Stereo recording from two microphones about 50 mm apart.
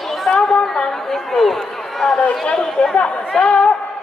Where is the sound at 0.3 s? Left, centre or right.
Centre.